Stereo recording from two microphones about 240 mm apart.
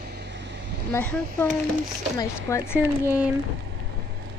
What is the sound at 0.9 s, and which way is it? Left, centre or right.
Speech, centre.